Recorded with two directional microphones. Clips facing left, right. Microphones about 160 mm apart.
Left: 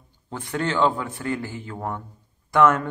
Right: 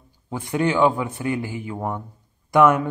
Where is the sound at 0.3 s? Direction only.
15° right (ahead or behind).